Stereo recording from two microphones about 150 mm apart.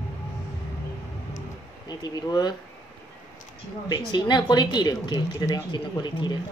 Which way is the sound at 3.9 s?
30° left (ahead or behind).